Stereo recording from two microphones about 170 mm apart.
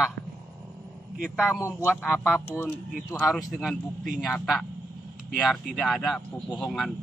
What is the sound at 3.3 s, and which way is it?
Speech, centre (ahead or behind).